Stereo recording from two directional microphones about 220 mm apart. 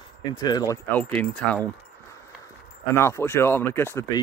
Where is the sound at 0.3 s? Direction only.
20° left (ahead or behind).